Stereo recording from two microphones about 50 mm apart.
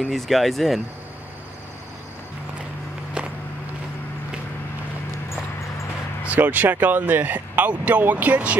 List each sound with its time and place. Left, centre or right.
0.0 s speech: centre
3.2 s vehicle: right
6.3 s speech: right